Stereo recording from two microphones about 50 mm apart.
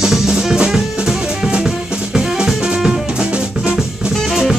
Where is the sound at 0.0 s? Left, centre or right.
Centre.